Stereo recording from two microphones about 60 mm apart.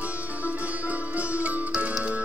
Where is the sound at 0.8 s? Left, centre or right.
Right.